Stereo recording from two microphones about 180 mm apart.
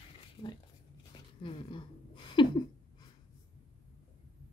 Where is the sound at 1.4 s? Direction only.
30° left (ahead or behind).